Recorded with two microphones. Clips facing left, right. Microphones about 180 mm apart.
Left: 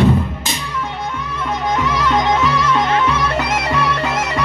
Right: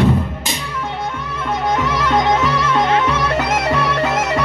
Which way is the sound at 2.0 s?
50° right (ahead or behind).